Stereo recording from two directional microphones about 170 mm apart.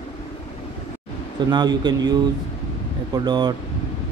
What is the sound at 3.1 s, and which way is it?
Speech, 25° right (ahead or behind).